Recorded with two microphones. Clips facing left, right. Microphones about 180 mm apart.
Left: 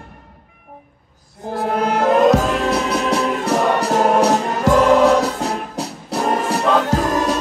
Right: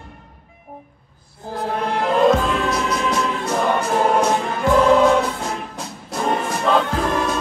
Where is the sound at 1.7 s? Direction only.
40° left (ahead or behind).